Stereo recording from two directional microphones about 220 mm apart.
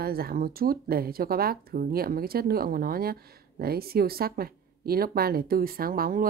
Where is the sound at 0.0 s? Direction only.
45° right (ahead or behind).